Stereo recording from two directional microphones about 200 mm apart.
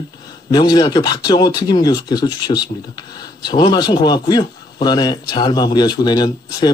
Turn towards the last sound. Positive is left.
turn(degrees=20)  # may be behind; listen again after turning